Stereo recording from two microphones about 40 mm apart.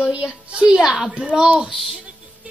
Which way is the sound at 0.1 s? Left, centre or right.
Right.